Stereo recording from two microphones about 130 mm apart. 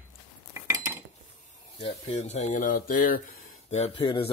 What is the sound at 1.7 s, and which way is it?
Speech, 55° left (ahead or behind).